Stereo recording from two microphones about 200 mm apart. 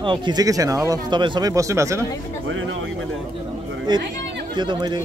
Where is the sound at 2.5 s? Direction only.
80° right.